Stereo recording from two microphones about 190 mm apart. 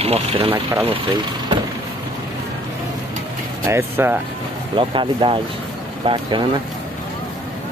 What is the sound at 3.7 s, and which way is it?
Speech, 10° right (ahead or behind).